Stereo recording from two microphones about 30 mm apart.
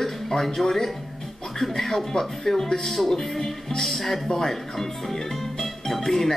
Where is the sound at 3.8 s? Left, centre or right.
Centre.